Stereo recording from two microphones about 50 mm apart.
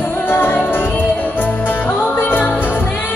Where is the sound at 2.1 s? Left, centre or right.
Left.